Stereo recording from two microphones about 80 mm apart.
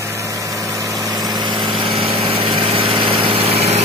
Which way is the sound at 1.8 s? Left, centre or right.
Right.